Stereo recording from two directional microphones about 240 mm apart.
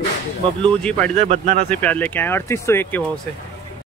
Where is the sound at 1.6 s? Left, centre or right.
Centre.